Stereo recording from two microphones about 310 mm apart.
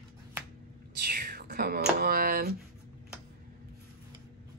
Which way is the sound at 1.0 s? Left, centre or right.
Right.